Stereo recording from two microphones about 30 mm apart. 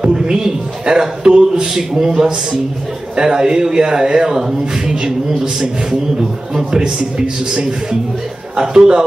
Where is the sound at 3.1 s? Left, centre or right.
Right.